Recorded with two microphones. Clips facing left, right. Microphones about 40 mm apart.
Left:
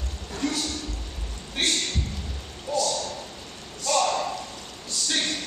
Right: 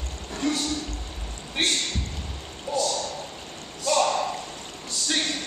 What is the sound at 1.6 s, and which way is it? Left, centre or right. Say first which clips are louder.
Speech: right 1 dB; right.